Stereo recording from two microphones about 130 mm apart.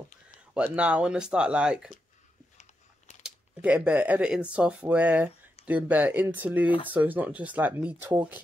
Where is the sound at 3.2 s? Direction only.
10° right (ahead or behind).